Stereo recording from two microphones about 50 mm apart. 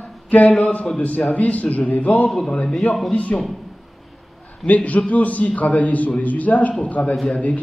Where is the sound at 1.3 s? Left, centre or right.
Left.